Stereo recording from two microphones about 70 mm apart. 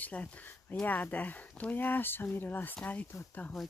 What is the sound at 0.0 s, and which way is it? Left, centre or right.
Speech, left.